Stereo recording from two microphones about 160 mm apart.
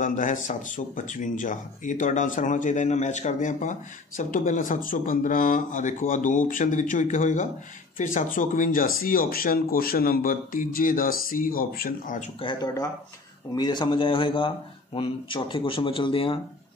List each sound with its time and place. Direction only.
0.0 s speech: 50° left (ahead or behind)
12.4 s speech: 30° left (ahead or behind)